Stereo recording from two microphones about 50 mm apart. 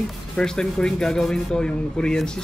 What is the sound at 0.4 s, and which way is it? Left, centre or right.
Speech, centre.